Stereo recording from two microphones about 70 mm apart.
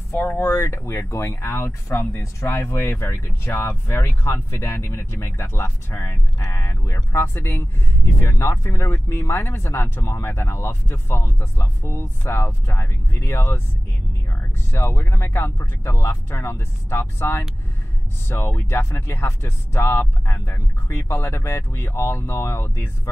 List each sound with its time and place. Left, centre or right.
0.1 s speech: left
8.6 s speech: left
14.7 s speech: left